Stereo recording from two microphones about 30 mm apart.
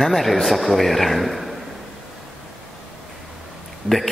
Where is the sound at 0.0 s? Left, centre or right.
Centre.